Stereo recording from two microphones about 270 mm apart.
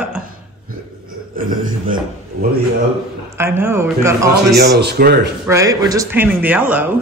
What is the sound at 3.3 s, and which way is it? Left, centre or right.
Speech, centre.